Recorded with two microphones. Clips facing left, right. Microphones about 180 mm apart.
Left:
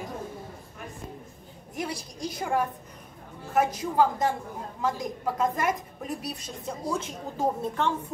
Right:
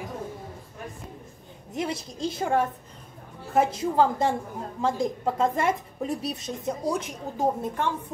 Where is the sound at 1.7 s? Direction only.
25° right (ahead or behind).